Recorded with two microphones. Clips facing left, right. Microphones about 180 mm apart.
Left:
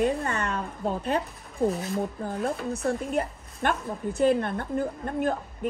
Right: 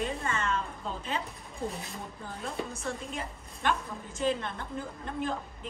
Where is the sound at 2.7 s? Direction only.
60° left (ahead or behind).